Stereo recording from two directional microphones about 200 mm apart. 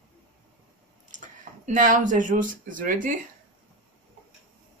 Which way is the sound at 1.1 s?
40° right (ahead or behind).